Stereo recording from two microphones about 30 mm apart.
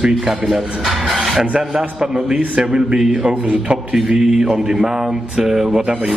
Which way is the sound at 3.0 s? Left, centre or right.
Centre.